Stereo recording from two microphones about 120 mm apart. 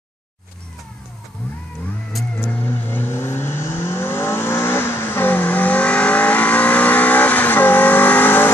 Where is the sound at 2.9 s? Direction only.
20° left (ahead or behind).